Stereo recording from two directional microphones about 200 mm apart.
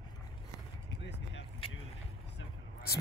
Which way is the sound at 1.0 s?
60° left (ahead or behind).